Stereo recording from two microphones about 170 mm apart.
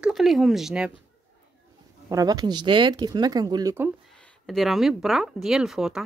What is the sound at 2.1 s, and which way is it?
Speech, 20° right (ahead or behind).